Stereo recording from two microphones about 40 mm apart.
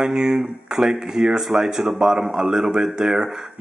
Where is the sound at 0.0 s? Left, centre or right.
Centre.